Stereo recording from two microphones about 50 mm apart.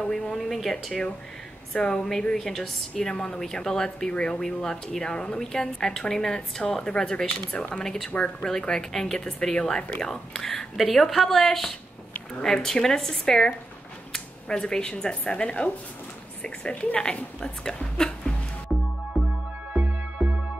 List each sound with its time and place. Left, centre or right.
0.0 s a woman's voice: centre
1.7 s a woman's voice: centre
2.3 s a woman's voice: centre
7.5 s speech: left
7.8 s a woman's voice: centre
8.1 s speech: left
8.5 s a woman's voice: centre